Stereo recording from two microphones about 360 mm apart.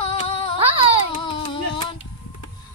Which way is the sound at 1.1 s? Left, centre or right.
Centre.